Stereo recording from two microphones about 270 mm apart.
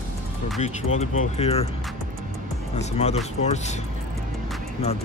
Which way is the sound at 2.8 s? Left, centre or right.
Left.